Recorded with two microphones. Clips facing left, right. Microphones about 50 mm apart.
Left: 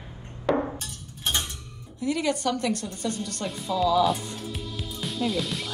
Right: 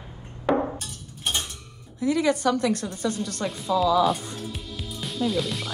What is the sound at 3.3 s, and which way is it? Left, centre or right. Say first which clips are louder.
Speech: right 4 dB; centre.